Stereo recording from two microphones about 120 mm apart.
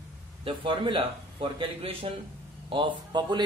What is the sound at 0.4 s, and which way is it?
Speech, 45° right (ahead or behind).